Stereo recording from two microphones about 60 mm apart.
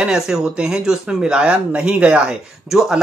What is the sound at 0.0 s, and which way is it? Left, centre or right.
Speech, centre.